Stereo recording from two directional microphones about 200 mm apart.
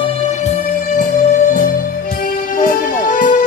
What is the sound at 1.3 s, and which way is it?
Music, 40° left (ahead or behind).